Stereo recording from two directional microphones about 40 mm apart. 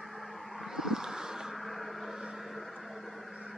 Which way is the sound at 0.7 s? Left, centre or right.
Centre.